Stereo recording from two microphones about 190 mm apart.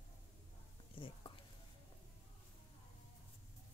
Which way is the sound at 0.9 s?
25° left (ahead or behind).